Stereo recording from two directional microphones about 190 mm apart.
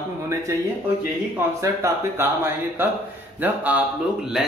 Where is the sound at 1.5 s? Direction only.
15° right (ahead or behind).